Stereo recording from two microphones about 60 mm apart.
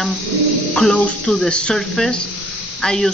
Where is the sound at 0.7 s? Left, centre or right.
Centre.